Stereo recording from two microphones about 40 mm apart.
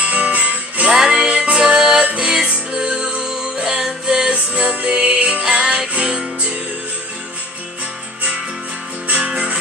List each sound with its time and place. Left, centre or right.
0.0 s music: right
0.8 s music: centre
1.3 s music: right
4.3 s music: right
9.0 s music: right